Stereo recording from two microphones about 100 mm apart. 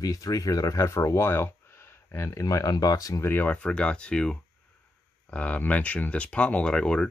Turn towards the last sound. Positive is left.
turn(degrees=10)  # may be behind; listen again after turning